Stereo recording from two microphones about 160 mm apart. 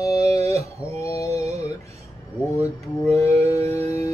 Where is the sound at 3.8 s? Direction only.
20° left (ahead or behind).